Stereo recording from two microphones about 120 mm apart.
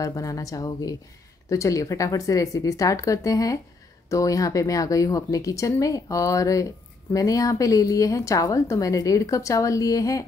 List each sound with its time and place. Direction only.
0.0 s speech: 30° left (ahead or behind)